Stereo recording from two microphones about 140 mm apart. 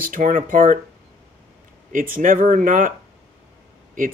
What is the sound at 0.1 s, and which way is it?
Speech, 75° right (ahead or behind).